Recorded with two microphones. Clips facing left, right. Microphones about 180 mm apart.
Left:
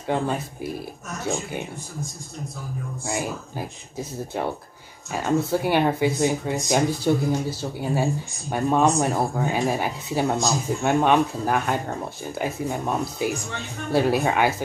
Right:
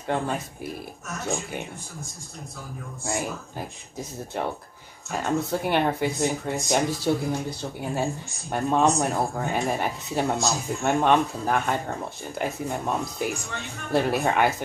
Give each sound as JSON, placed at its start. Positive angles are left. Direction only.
{"t": 0.0, "sound": "speech", "side_deg": 5}
{"t": 3.1, "sound": "speech", "side_deg": 0}